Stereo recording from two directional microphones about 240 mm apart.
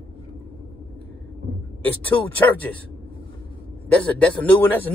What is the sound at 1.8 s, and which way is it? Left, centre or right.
Speech, centre.